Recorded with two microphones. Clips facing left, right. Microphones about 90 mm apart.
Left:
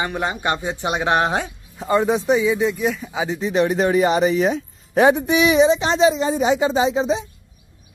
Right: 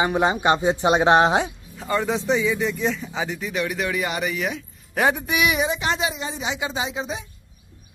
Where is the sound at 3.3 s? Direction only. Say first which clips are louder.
Left 11 dB; 30° left (ahead or behind).